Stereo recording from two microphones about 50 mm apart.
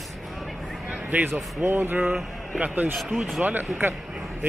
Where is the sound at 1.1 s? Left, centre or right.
Right.